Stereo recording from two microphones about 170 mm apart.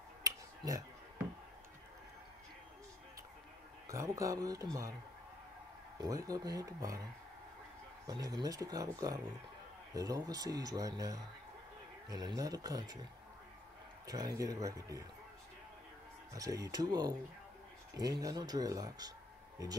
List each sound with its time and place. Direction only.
0.2 s a sound: 20° right (ahead or behind)
3.9 s speech: 20° right (ahead or behind)
5.9 s speech: 20° right (ahead or behind)
8.1 s speech: 20° right (ahead or behind)
14.0 s speech: 20° right (ahead or behind)
16.3 s speech: 20° right (ahead or behind)